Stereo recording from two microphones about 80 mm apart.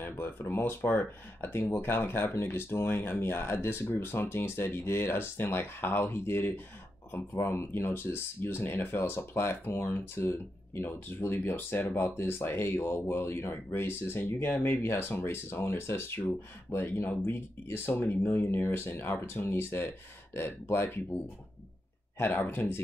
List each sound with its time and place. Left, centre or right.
0.0 s speech: left
22.2 s speech: left